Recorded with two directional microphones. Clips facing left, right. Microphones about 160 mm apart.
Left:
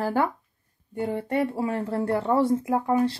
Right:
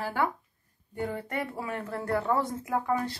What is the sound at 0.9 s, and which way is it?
Speech, 25° left (ahead or behind).